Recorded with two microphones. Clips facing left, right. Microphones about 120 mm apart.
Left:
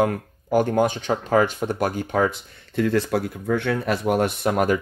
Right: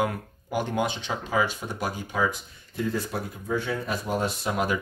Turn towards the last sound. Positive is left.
turn(degrees=55)  # may be behind; listen again after turning